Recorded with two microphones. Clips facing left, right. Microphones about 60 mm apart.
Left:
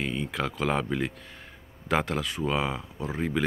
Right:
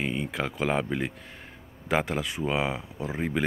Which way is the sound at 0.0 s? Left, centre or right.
Centre.